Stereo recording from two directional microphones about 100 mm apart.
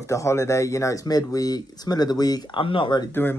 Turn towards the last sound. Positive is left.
turn(degrees=20)  # may be behind; listen again after turning